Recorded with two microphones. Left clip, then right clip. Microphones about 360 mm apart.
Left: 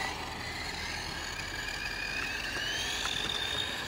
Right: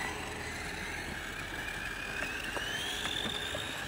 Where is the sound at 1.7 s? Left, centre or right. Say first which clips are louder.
Left 3 dB; centre.